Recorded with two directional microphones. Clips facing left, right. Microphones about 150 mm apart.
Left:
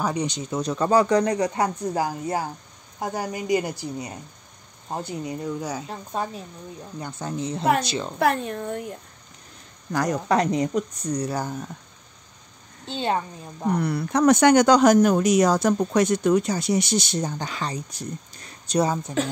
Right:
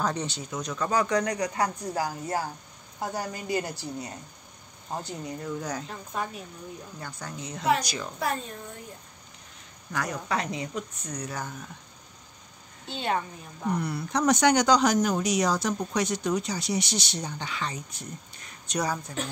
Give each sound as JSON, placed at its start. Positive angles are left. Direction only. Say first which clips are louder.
{"t": 0.0, "sound": "a woman's voice", "louder": "left 4 dB", "side_deg": 10}
{"t": 0.5, "sound": "a woman's voice", "louder": "left 8 dB", "side_deg": 30}
{"t": 5.9, "sound": "a woman's voice", "louder": "left 4 dB", "side_deg": 30}
{"t": 8.2, "sound": "speech", "louder": "left 9 dB", "side_deg": 70}
{"t": 9.9, "sound": "speech", "louder": "left 8 dB", "side_deg": 45}
{"t": 12.8, "sound": "a woman's voice", "louder": "left 4 dB", "side_deg": 30}
{"t": 13.7, "sound": "speech", "louder": "left 7 dB", "side_deg": 60}
{"t": 18.7, "sound": "a woman's voice", "louder": "left 7 dB", "side_deg": 25}